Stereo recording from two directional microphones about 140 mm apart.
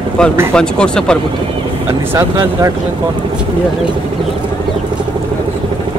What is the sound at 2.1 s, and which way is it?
Speech, 25° right (ahead or behind).